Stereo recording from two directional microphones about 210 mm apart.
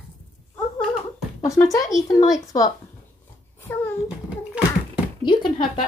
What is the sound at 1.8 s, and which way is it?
Speech, 35° left (ahead or behind).